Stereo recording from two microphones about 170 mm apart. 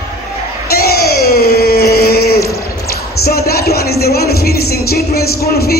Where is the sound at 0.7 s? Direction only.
65° left (ahead or behind).